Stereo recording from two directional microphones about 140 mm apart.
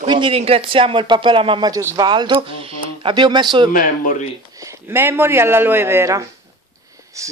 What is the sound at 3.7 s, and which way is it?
Speech, 70° left (ahead or behind).